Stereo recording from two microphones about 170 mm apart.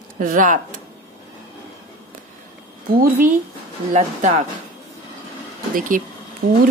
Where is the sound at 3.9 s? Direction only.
45° right (ahead or behind).